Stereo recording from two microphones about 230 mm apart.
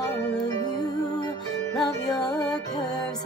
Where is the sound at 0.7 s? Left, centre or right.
Centre.